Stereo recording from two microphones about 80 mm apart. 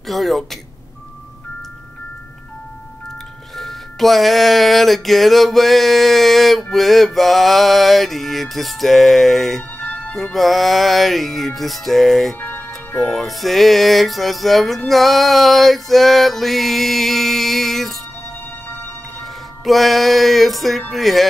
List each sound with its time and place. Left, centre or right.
0.0 s music: centre
3.5 s music: centre
9.8 s music: left
10.1 s music: centre
12.4 s music: left
13.1 s music: centre
19.6 s music: centre